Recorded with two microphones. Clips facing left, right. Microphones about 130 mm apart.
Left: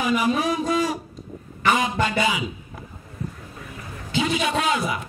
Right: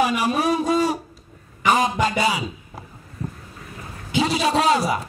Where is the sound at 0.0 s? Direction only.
70° right (ahead or behind).